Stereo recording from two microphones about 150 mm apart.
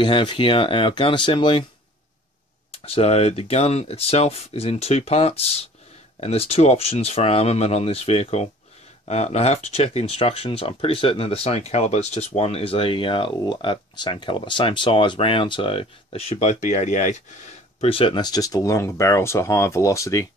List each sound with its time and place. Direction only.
0.0 s speech: 30° left (ahead or behind)
2.8 s speech: 40° left (ahead or behind)
17.7 s speech: 40° left (ahead or behind); by 20.2 s 20° left (ahead or behind)